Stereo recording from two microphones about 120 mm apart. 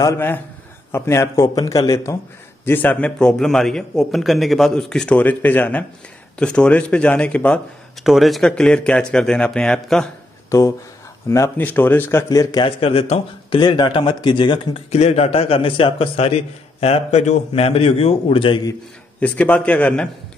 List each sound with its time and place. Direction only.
0.9 s speech: 20° left (ahead or behind)
2.6 s a man's voice: 15° left (ahead or behind)
8.0 s speech: centre (ahead or behind)
10.5 s speech: 25° left (ahead or behind)
12.6 s speech: 55° left (ahead or behind)
13.6 s speech: 40° left (ahead or behind)
14.9 s a man's voice: 60° left (ahead or behind)
19.1 s a man's voice: 10° left (ahead or behind)